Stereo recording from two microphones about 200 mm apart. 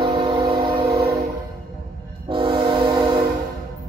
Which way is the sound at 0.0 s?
25° right (ahead or behind).